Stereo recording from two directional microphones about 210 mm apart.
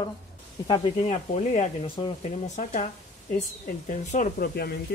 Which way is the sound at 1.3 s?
35° left (ahead or behind).